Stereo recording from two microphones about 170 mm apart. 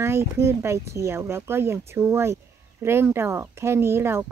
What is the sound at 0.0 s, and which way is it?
Speech, 15° right (ahead or behind).